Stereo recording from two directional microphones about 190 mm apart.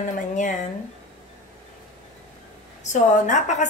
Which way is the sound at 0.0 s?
40° left (ahead or behind).